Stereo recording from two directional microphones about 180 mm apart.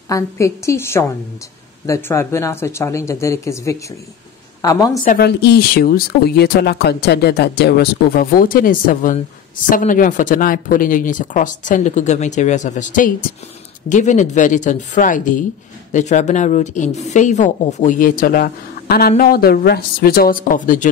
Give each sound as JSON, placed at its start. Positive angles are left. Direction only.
{"t": 0.1, "sound": "a woman's voice", "side_deg": 15}
{"t": 5.0, "sound": "a woman's voice", "side_deg": 50}
{"t": 5.4, "sound": "a woman's voice", "side_deg": 60}